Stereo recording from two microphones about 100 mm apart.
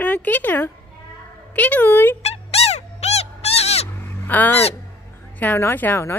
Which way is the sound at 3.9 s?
20° left (ahead or behind).